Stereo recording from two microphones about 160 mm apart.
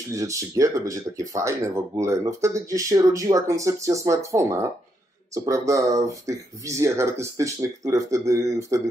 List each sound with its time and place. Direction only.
0.1 s speech: 20° right (ahead or behind)